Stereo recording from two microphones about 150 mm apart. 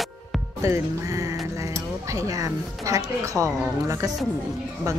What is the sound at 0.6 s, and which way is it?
A woman's voice, 20° right (ahead or behind).